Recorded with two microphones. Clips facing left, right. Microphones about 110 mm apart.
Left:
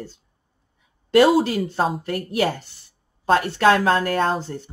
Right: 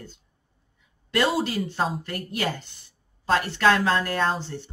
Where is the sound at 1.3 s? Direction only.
35° left (ahead or behind).